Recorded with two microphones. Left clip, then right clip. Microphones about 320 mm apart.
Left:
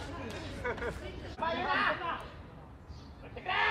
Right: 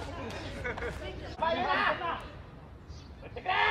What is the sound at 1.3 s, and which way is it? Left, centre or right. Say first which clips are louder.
Chatter: right 3 dB; right.